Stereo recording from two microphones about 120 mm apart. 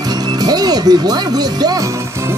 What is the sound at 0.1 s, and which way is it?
Speech, 35° right (ahead or behind).